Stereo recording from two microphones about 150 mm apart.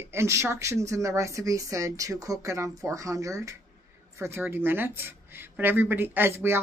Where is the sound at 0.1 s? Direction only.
20° right (ahead or behind).